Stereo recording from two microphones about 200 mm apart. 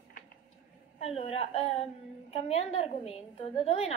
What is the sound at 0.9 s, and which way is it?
A woman's voice, 30° left (ahead or behind).